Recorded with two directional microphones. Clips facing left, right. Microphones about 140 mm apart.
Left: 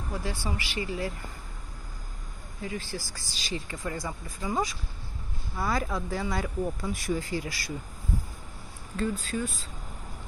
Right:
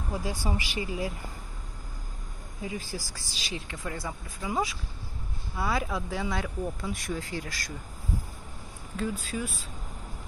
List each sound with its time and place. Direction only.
0.1 s speech: 20° right (ahead or behind)
2.6 s speech: 15° right (ahead or behind)
3.2 s speech: centre (ahead or behind)
8.9 s speech: 5° right (ahead or behind)